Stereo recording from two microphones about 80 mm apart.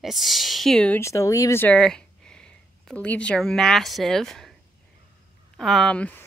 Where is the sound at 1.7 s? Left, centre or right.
Centre.